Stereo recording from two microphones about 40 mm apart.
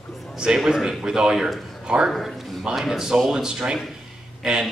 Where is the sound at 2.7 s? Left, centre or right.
Centre.